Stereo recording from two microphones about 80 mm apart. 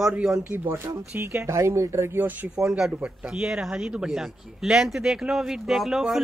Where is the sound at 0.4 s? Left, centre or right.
Right.